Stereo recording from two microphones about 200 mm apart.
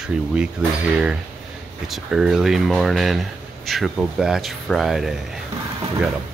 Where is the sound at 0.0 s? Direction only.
5° right (ahead or behind).